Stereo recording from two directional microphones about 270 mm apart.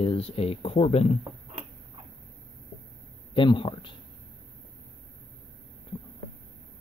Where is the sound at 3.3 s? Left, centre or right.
Centre.